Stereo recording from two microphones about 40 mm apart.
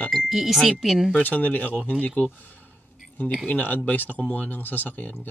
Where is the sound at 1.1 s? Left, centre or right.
Left.